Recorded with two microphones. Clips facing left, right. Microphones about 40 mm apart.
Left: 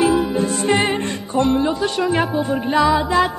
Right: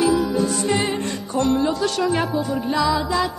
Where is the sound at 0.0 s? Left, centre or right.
Left.